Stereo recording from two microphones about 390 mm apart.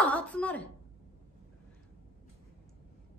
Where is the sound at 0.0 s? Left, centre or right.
Centre.